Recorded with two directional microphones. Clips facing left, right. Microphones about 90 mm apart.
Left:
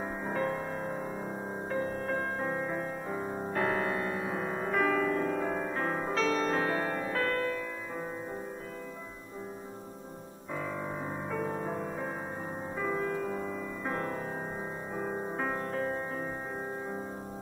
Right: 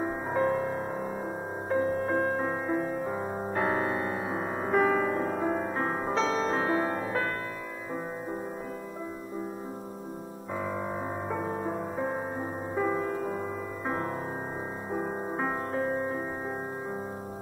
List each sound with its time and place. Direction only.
0.0 s music: 15° right (ahead or behind)
10.5 s music: 15° right (ahead or behind)